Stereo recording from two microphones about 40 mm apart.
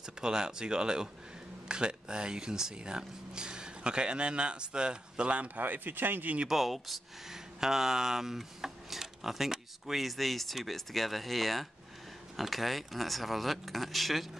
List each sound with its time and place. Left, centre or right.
0.0 s speech: centre
5.6 s speech: right
6.4 s speech: centre